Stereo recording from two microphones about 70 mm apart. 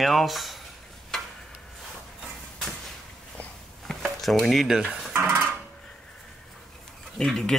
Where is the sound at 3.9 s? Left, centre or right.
Centre.